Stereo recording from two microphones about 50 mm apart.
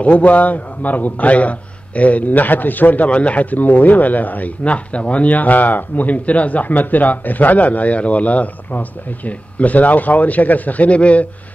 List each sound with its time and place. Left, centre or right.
0.0 s speech: left